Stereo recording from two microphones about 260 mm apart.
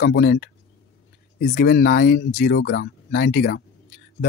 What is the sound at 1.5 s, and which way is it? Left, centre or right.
Speech, left.